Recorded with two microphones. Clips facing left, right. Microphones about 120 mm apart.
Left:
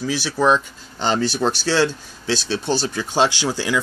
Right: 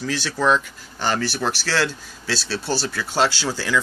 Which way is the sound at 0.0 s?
10° left (ahead or behind).